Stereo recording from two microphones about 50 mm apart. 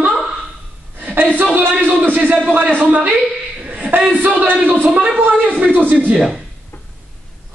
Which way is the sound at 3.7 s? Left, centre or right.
Right.